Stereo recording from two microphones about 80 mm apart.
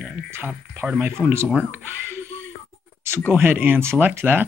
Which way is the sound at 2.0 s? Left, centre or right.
Right.